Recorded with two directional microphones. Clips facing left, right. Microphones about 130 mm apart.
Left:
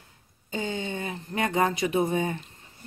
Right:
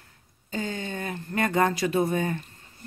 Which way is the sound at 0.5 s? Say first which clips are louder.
Left 1 dB; 20° left (ahead or behind).